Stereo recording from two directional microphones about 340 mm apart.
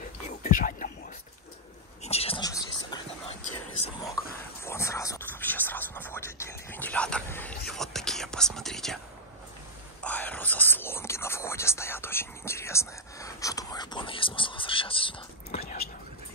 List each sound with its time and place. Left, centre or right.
0.4 s whispering: left
2.0 s whispering: centre
4.6 s a sound: centre
10.0 s whispering: centre